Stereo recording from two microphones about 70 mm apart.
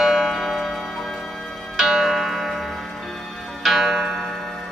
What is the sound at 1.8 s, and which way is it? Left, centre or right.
Tick-tock, centre.